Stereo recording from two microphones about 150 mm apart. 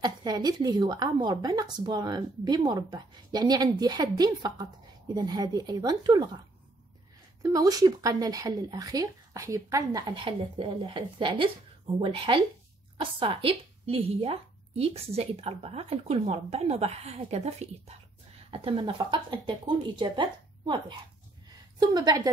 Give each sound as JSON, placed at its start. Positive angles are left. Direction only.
{"t": 0.0, "sound": "speech", "side_deg": -25}
{"t": 7.4, "sound": "speech", "side_deg": -25}